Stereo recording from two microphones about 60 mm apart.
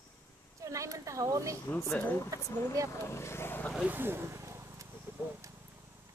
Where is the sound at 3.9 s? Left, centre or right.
Right.